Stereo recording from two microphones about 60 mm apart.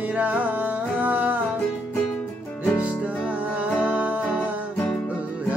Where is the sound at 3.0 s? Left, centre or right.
Right.